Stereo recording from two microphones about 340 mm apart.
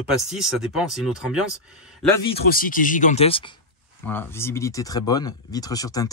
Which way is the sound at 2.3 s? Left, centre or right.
Left.